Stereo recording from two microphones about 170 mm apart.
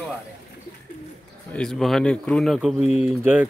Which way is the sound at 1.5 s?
5° left (ahead or behind).